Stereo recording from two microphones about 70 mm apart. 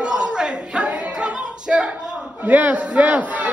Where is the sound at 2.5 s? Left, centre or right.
Right.